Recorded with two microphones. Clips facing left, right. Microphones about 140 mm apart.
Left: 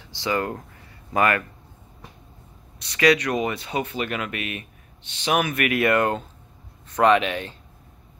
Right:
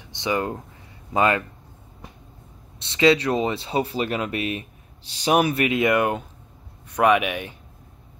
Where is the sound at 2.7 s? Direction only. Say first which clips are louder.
Right 1 dB; 25° right (ahead or behind).